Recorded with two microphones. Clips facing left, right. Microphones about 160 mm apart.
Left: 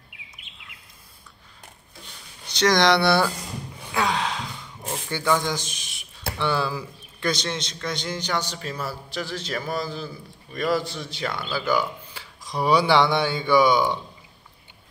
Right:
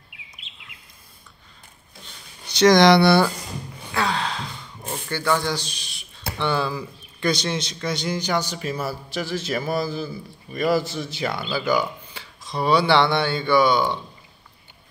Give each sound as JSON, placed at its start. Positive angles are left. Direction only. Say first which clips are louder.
{"t": 2.5, "sound": "speech", "louder": "right 5 dB", "side_deg": -15}
{"t": 3.0, "sound": "a man's voice", "louder": "right 4 dB", "side_deg": 0}
{"t": 3.9, "sound": "gasp", "louder": "even", "side_deg": 15}
{"t": 6.3, "sound": "a man's voice", "louder": "right 1 dB", "side_deg": 5}